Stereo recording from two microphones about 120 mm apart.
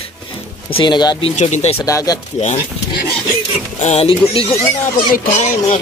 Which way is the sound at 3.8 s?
60° left (ahead or behind).